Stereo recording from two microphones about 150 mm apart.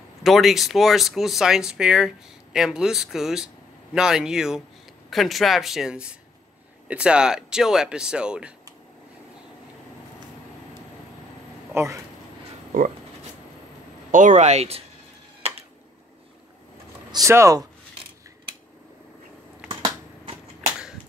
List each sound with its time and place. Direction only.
0.2 s speech: centre (ahead or behind)
11.7 s speech: 20° right (ahead or behind)
14.1 s speech: 55° right (ahead or behind)
17.1 s speech: 20° right (ahead or behind)
19.7 s typewriter: 35° right (ahead or behind)